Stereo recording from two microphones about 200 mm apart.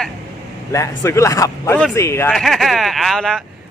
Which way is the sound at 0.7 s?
15° left (ahead or behind).